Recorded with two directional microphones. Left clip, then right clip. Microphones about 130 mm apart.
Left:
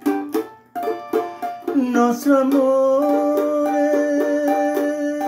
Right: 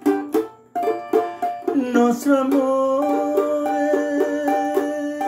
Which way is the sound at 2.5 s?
10° right (ahead or behind).